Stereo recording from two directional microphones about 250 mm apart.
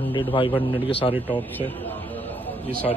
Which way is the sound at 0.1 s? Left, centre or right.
Centre.